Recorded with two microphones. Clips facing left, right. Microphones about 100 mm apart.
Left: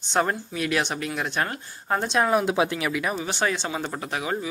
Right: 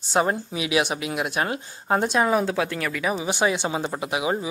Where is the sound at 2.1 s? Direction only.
Centre (ahead or behind).